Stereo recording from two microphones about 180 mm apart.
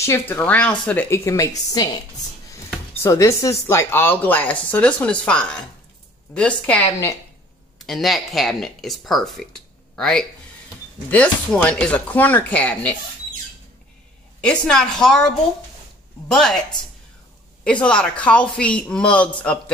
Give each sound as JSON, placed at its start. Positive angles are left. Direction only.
{"t": 0.0, "sound": "speech", "side_deg": 10}
{"t": 3.0, "sound": "speech", "side_deg": 15}
{"t": 7.8, "sound": "speech", "side_deg": 0}
{"t": 14.4, "sound": "speech", "side_deg": 5}
{"t": 17.8, "sound": "speech", "side_deg": 5}